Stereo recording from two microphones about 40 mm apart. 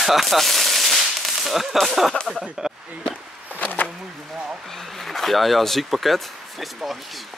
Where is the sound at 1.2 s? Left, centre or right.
Centre.